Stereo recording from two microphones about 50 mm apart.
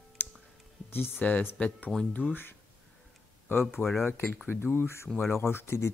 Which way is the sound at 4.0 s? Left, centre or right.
Left.